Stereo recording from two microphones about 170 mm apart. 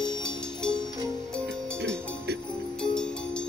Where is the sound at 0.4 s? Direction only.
5° left (ahead or behind).